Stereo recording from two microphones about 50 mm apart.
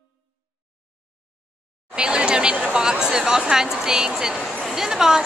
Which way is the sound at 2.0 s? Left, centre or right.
Centre.